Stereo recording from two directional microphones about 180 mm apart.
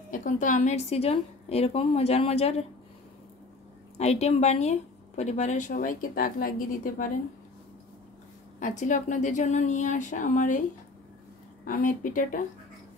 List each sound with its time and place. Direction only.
0.1 s a woman's voice: 45° left (ahead or behind)
4.0 s a woman's voice: 35° left (ahead or behind)
8.5 s speech: 45° left (ahead or behind)
11.6 s speech: 50° left (ahead or behind)